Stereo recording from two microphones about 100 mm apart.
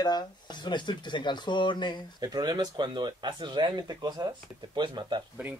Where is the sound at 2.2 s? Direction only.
45° right (ahead or behind).